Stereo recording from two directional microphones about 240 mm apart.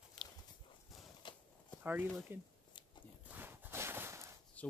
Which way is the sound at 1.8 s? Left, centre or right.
Centre.